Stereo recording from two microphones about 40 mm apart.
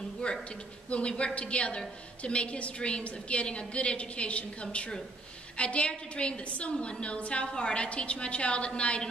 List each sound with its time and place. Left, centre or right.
0.2 s a man's voice: left